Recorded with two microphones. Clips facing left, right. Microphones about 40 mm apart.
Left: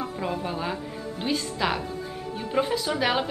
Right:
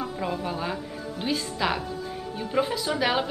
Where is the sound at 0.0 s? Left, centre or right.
Centre.